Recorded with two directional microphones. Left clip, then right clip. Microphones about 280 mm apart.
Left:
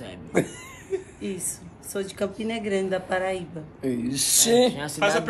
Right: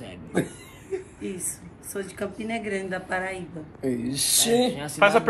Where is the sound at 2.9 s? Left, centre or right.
Left.